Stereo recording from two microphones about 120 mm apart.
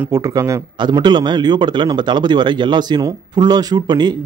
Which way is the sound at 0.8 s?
40° right (ahead or behind).